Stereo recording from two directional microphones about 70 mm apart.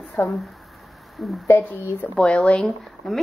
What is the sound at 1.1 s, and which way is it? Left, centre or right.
Speech, centre.